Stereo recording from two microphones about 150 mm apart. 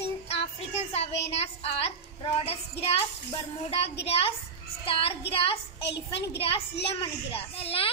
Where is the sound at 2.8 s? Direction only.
40° left (ahead or behind).